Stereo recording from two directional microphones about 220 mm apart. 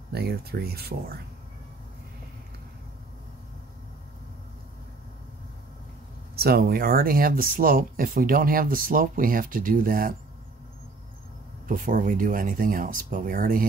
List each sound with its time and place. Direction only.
0.1 s speech: 45° right (ahead or behind)
6.3 s speech: 45° right (ahead or behind)
11.6 s speech: 40° right (ahead or behind)